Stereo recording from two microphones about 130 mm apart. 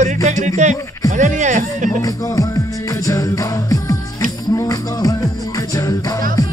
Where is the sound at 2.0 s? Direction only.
25° left (ahead or behind).